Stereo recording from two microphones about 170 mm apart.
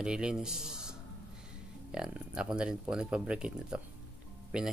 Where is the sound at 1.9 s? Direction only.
5° right (ahead or behind).